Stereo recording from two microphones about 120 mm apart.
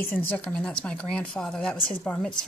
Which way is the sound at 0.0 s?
15° left (ahead or behind).